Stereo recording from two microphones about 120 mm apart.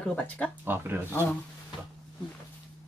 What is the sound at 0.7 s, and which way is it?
Speech, 20° right (ahead or behind).